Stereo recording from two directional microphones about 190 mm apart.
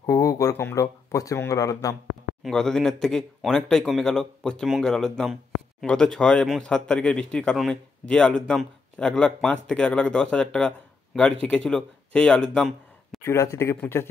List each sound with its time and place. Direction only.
0.0 s speech: 20° left (ahead or behind)
2.4 s speech: 5° left (ahead or behind)